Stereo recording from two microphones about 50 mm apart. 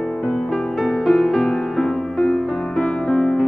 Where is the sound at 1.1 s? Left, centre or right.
Centre.